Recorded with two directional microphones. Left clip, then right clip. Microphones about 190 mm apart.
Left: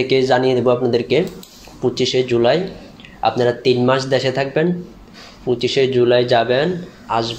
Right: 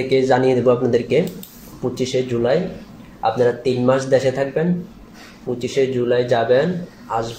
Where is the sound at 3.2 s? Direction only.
25° left (ahead or behind).